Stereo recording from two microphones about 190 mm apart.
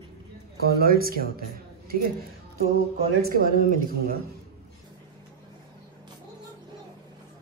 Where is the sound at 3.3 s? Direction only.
45° right (ahead or behind).